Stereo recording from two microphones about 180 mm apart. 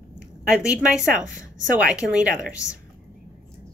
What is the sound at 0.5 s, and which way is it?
A woman's voice, 5° right (ahead or behind).